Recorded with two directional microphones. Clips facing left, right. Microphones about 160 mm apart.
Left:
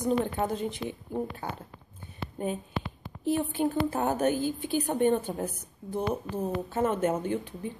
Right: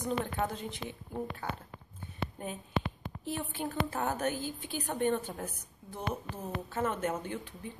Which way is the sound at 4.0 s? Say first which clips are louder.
Left 7 dB; 25° left (ahead or behind).